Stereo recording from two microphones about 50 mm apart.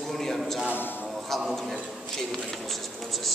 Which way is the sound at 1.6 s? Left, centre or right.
Centre.